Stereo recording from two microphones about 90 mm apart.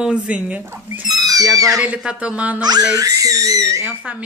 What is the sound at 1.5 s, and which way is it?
Speech, 40° right (ahead or behind).